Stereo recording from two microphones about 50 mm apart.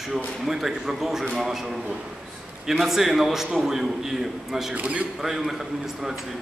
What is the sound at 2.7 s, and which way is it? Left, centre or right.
A man's voice, centre.